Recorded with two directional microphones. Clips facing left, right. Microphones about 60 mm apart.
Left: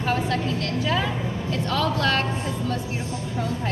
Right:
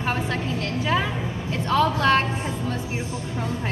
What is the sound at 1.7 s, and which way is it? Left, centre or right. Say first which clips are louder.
Speech: right 5 dB; right.